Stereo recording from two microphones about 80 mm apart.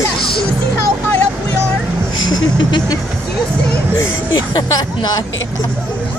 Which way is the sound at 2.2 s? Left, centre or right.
Left.